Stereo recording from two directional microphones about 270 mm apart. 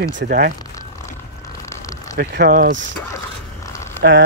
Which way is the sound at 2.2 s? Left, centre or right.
Right.